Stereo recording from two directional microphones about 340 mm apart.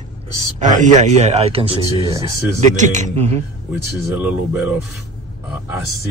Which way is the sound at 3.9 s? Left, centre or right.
Centre.